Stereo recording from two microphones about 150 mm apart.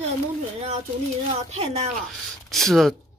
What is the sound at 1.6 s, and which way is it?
Speech, 40° right (ahead or behind).